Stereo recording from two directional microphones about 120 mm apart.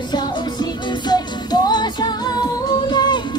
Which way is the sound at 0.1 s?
35° left (ahead or behind).